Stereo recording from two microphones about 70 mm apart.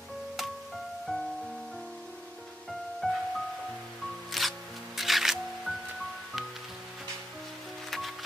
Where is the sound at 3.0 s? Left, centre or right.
Centre.